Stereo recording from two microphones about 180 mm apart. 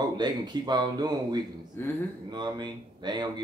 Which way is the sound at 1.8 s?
15° left (ahead or behind).